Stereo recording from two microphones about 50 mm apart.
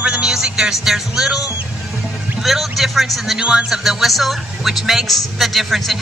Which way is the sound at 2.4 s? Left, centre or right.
Centre.